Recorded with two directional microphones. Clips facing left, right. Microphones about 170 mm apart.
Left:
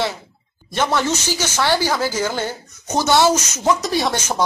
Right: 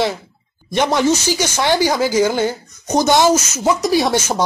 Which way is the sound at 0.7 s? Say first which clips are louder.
Right 4 dB; 15° right (ahead or behind).